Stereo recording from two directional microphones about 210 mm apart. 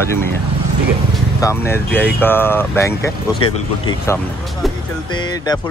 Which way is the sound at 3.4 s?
25° left (ahead or behind).